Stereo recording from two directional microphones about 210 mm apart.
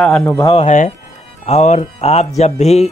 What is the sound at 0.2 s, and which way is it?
Speech, 15° left (ahead or behind).